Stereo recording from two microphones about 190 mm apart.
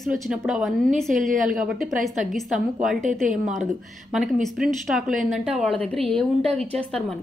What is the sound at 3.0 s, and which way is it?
Speech, 40° right (ahead or behind).